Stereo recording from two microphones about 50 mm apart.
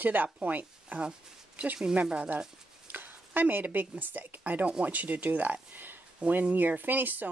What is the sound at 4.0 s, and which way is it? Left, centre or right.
Speech, right.